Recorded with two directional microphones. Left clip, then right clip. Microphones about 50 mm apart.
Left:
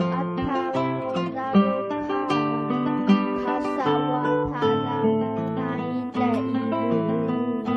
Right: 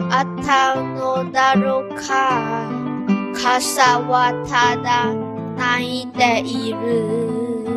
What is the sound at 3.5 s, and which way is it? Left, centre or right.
Music, right.